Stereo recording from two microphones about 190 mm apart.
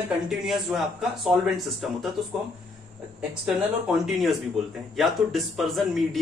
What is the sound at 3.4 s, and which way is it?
A man's voice, 5° right (ahead or behind).